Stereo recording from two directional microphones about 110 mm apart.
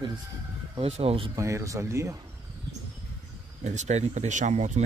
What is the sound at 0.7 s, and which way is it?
Speech, 60° right (ahead or behind).